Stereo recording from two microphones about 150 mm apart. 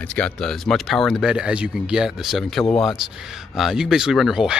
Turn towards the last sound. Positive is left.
turn(degrees=-5)  # may be behind; listen again after turning